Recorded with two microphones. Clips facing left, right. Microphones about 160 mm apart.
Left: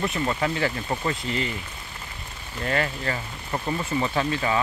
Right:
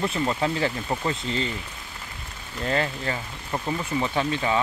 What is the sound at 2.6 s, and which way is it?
Speech, 25° right (ahead or behind).